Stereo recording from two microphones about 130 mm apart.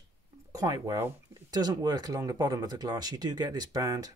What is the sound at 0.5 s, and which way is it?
Speech, 30° right (ahead or behind).